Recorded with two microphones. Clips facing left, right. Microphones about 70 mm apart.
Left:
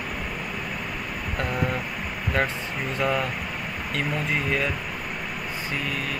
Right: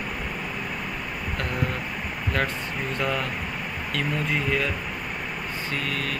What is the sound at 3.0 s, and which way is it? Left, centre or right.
Speech, centre.